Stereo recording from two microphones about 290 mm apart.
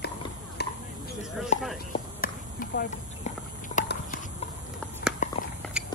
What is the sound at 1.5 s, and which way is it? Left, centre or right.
Speech, left.